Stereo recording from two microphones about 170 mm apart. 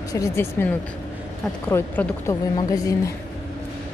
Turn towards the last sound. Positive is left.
turn(degrees=20)  # may be behind; listen again after turning